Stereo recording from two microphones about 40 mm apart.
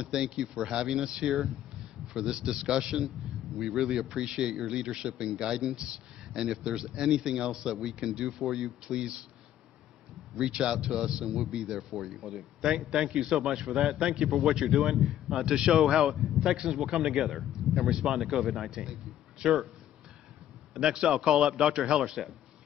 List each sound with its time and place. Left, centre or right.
0.2 s a man's voice: centre
10.3 s a man's voice: right
15.7 s a man's voice: centre
18.7 s a man's voice: centre
21.1 s a man's voice: centre